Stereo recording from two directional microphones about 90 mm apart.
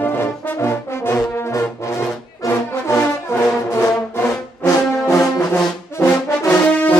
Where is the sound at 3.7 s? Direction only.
25° left (ahead or behind).